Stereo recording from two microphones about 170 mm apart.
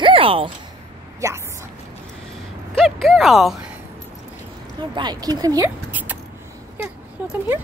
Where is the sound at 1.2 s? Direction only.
15° right (ahead or behind).